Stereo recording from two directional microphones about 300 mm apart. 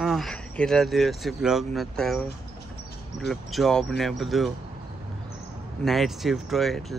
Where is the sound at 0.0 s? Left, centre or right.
Centre.